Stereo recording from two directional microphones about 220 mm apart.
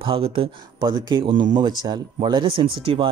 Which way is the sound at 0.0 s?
25° right (ahead or behind).